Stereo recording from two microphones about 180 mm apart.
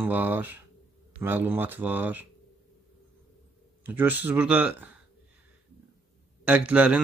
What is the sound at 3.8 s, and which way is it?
Speech, 10° right (ahead or behind).